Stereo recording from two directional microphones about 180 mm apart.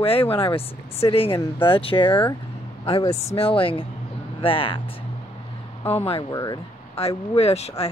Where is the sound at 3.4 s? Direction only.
30° left (ahead or behind).